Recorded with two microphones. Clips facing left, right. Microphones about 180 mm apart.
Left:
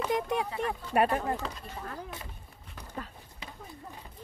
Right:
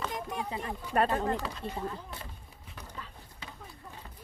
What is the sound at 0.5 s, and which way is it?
Speech, 20° right (ahead or behind).